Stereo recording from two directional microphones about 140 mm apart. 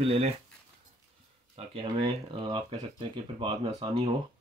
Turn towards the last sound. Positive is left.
turn(degrees=-35)  # may be behind; listen again after turning